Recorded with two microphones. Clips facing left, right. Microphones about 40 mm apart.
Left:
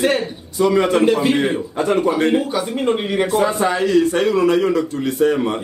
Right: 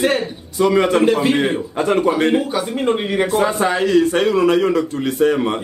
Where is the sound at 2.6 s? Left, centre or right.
Right.